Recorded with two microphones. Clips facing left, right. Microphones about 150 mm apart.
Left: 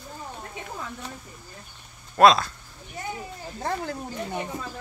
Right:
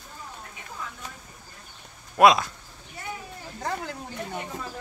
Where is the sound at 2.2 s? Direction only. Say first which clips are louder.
Left 1 dB; 15° right (ahead or behind).